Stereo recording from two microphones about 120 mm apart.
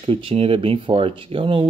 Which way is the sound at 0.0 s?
50° right (ahead or behind).